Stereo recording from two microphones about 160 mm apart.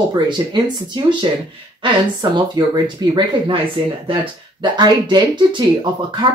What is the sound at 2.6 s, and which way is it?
Speech, 30° right (ahead or behind).